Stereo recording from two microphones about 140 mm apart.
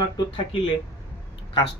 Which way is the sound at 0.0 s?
40° left (ahead or behind).